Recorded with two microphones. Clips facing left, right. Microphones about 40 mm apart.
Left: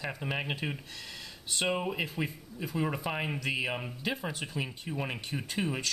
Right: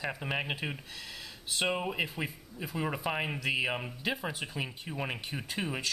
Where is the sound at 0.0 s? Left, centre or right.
Centre.